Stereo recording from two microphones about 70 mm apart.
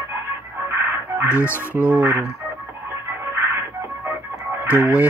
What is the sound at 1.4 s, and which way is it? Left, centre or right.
Speech, left.